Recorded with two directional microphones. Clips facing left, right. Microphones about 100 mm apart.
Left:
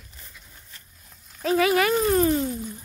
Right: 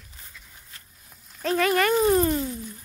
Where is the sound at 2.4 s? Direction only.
20° left (ahead or behind).